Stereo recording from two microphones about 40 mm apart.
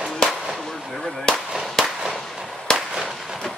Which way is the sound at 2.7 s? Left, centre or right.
Centre.